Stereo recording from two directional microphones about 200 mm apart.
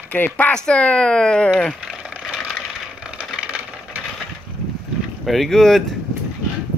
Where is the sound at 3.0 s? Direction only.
5° right (ahead or behind).